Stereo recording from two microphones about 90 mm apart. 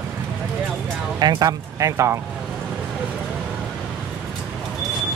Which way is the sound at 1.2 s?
45° right (ahead or behind).